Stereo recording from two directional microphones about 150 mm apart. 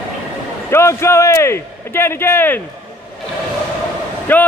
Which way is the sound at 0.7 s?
15° left (ahead or behind).